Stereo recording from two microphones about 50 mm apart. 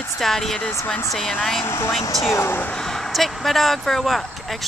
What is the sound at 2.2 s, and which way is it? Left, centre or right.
Speech, left.